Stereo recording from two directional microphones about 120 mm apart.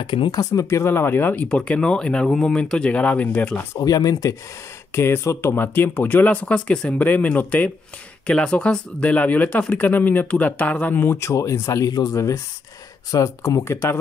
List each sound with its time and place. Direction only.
0.0 s speech: 40° left (ahead or behind)
0.4 s speech: 25° left (ahead or behind)
3.8 s speech: 30° left (ahead or behind)